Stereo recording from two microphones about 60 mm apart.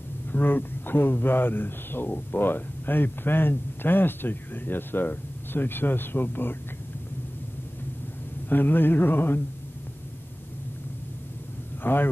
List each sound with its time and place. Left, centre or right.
0.3 s a man's voice: left
8.5 s a man's voice: left
11.8 s speech: left